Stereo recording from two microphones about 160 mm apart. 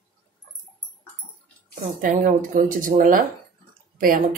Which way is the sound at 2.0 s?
55° right (ahead or behind).